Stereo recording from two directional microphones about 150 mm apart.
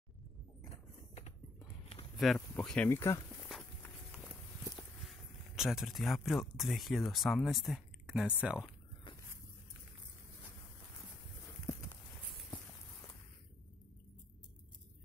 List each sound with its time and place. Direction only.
0.7 s a sound: 45° left (ahead or behind)
2.1 s speech: 5° left (ahead or behind)
3.8 s run: 5° left (ahead or behind)
5.6 s speech: centre (ahead or behind)
9.1 s vehicle: 35° left (ahead or behind)
11.4 s walk: 20° left (ahead or behind)